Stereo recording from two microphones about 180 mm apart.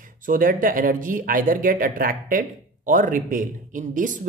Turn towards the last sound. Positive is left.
turn(degrees=-45)  # may be behind; listen again after turning